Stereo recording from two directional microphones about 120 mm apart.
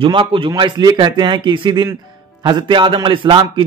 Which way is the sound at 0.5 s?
35° right (ahead or behind).